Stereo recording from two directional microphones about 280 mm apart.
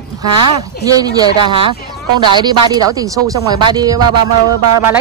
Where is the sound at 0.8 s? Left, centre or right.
Centre.